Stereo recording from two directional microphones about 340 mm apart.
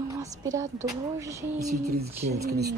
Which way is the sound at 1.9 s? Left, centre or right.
Centre.